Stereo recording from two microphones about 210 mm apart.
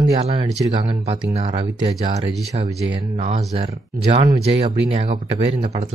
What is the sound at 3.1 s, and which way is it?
Speech, 25° right (ahead or behind).